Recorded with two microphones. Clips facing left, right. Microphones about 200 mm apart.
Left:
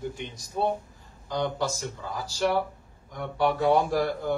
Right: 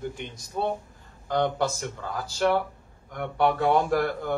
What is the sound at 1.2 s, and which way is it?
Speech, 55° right (ahead or behind).